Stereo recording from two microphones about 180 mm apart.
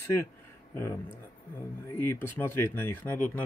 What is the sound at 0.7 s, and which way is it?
Speech, 15° left (ahead or behind).